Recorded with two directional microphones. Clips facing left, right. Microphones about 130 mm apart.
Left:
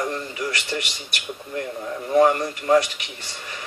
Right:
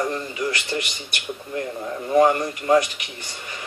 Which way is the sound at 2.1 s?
20° right (ahead or behind).